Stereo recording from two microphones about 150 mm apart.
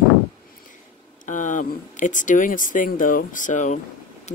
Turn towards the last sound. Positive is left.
turn(degrees=55)  # may be behind; listen again after turning